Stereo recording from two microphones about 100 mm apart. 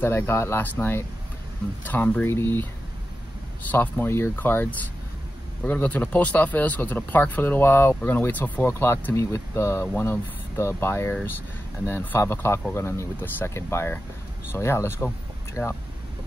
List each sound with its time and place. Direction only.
0.0 s speech: 25° left (ahead or behind)
4.0 s speech: 20° left (ahead or behind)
15.6 s speech: 5° left (ahead or behind)